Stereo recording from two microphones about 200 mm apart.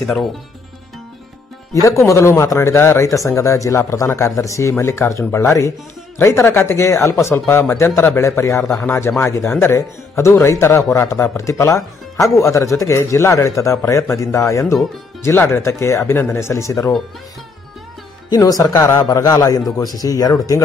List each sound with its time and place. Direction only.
0.0 s speech: centre (ahead or behind)
1.7 s speech: 15° left (ahead or behind)
18.3 s speech: 15° left (ahead or behind)